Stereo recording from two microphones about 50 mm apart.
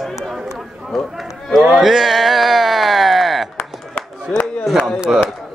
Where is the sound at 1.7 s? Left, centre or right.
Centre.